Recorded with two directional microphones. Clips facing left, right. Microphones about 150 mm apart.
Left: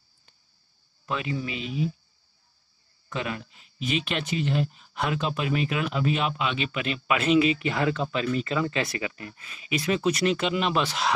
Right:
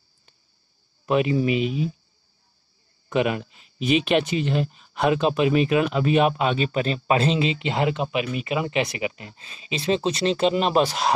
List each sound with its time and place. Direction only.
1.0 s speech: 20° right (ahead or behind)
3.1 s speech: 20° right (ahead or behind)
4.5 s speech: 65° right (ahead or behind)
5.3 s speech: 20° right (ahead or behind)
5.8 s speech: 60° right (ahead or behind); by 11.1 s 40° right (ahead or behind)